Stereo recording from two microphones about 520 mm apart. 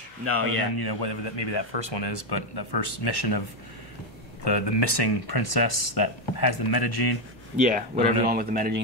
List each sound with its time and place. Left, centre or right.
0.2 s speech: right
0.7 s speech: left
4.5 s speech: left
7.6 s speech: centre